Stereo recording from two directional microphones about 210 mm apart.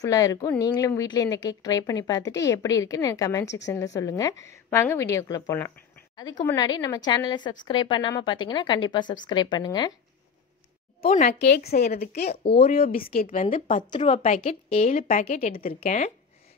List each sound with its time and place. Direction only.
0.0 s a woman's voice: 15° left (ahead or behind)
11.1 s a woman's voice: 45° left (ahead or behind)
12.3 s a woman's voice: 25° left (ahead or behind)
12.6 s a woman's voice: 45° left (ahead or behind)
13.2 s speech: 30° left (ahead or behind)
13.8 s a woman's voice: 25° left (ahead or behind)
14.1 s speech: 35° left (ahead or behind)